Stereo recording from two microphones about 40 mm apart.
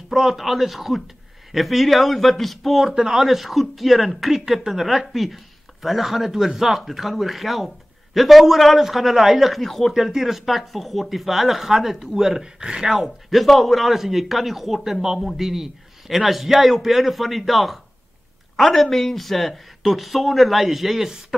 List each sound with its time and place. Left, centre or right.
0.1 s a man's voice: centre
9.9 s a man's voice: centre
12.9 s a man's voice: centre